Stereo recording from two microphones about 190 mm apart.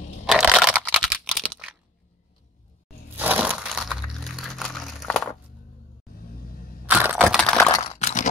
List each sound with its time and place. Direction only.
0.3 s crunch: centre (ahead or behind)
3.2 s a sound: 10° right (ahead or behind)
6.9 s crushing: 5° right (ahead or behind)
7.8 s crunch: 35° left (ahead or behind)